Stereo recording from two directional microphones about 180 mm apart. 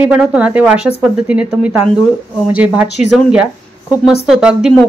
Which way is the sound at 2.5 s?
5° right (ahead or behind).